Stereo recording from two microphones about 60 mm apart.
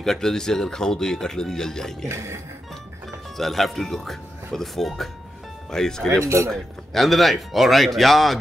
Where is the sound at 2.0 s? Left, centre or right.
Right.